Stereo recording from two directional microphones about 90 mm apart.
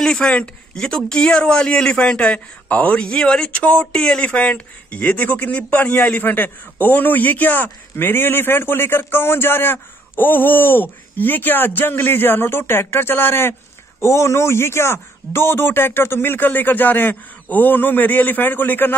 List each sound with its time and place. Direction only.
0.0 s speech: 10° left (ahead or behind)